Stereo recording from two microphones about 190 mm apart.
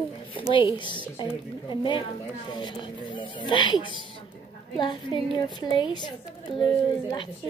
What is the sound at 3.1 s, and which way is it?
A woman's voice, 25° left (ahead or behind).